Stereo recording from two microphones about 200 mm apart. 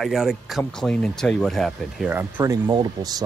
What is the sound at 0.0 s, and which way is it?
Speech, centre (ahead or behind).